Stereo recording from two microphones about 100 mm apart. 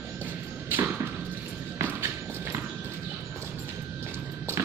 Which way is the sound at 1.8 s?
20° right (ahead or behind).